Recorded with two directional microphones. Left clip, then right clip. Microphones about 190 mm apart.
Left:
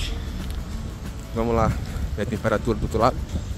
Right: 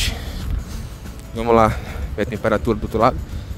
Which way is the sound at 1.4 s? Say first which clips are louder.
Right 8 dB; 55° right (ahead or behind).